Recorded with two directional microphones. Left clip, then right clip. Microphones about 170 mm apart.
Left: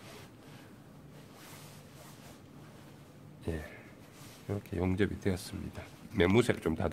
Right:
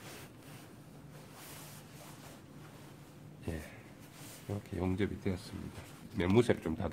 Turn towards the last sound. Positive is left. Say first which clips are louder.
# left 2 dB
turn(degrees=30)  # may be behind; listen again after turning